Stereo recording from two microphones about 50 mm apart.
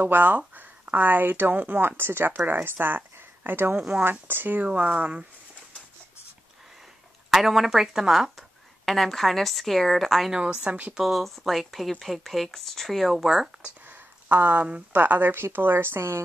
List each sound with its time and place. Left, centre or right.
0.0 s speech: right
3.7 s speech: right
4.0 s speech: right
4.6 s speech: right
7.2 s a woman's voice: centre
8.8 s a woman's voice: centre
10.3 s speech: centre
11.0 s a woman's voice: centre
13.8 s a sound: right
14.9 s a woman's voice: right